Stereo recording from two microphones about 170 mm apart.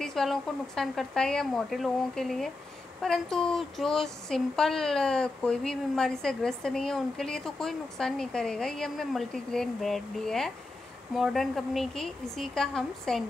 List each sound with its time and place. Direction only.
0.0 s speech: centre (ahead or behind)